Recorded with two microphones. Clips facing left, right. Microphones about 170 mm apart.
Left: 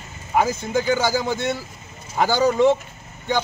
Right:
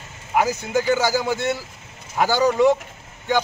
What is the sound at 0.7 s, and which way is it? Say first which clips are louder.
Speech: right 1 dB; 15° left (ahead or behind).